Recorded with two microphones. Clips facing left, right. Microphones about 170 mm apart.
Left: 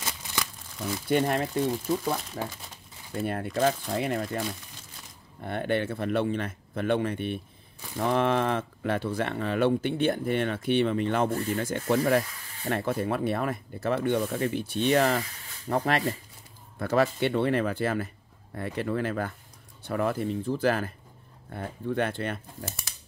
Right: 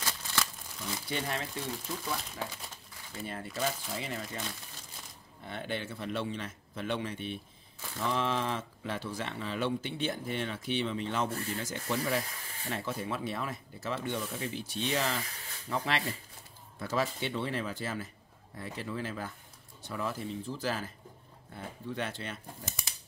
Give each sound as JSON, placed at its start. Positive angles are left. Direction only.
{"t": 1.0, "sound": "speech", "side_deg": 55}
{"t": 3.2, "sound": "speech", "side_deg": 60}
{"t": 5.4, "sound": "speech", "side_deg": 55}